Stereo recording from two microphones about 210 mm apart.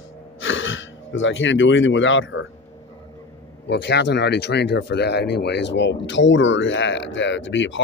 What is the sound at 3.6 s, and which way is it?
Speech, 55° left (ahead or behind).